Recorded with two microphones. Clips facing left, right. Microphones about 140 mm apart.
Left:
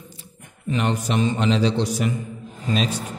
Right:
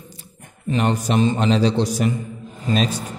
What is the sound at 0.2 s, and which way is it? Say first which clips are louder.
A man's voice: right 2 dB; 40° right (ahead or behind).